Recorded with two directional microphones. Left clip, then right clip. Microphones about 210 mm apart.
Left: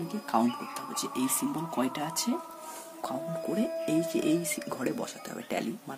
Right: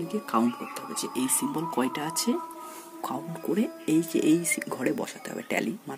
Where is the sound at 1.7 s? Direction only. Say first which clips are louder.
Right 1 dB; 10° right (ahead or behind).